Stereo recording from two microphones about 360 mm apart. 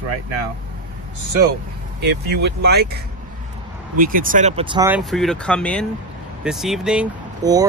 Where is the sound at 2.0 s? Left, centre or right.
Right.